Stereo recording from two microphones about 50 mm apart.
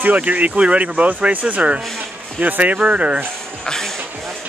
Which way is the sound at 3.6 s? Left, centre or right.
Centre.